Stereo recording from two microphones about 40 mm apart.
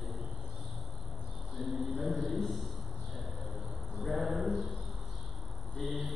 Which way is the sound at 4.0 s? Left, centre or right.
Centre.